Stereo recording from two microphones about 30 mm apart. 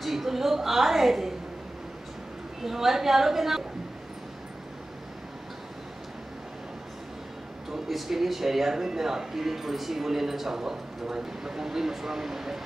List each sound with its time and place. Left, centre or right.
0.0 s a woman's voice: centre
2.6 s speech: centre
7.9 s speech: centre